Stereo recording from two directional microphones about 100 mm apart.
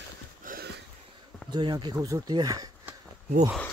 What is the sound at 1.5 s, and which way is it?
Speech, 50° right (ahead or behind).